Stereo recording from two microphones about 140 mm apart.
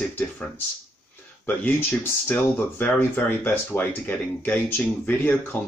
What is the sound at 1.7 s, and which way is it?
Speech, 15° left (ahead or behind).